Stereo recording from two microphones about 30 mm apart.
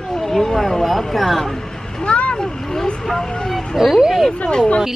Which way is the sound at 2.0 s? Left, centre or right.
Left.